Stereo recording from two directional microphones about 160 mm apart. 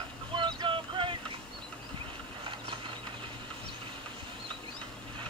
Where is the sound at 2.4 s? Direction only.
30° right (ahead or behind).